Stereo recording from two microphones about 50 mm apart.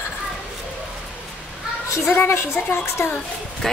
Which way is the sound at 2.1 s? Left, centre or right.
Left.